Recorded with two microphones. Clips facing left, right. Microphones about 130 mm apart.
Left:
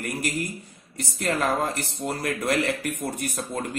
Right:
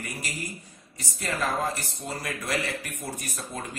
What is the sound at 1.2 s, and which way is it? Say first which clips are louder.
A man's voice: left 4 dB; 60° left (ahead or behind).